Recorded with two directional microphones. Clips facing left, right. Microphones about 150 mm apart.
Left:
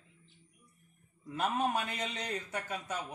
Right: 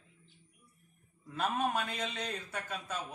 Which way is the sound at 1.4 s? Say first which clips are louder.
Left 1 dB; 15° left (ahead or behind).